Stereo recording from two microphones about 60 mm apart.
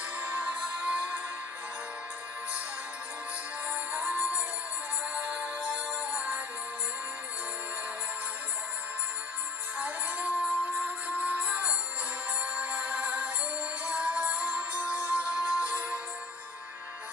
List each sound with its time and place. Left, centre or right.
0.2 s music: right
3.7 s music: right
9.8 s music: right